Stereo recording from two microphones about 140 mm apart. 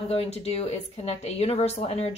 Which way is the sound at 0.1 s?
45° left (ahead or behind).